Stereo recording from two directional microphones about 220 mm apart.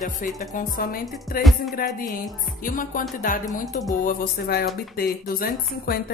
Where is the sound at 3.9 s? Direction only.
40° left (ahead or behind).